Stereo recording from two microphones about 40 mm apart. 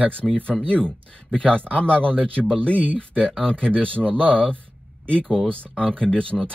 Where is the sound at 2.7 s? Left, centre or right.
Left.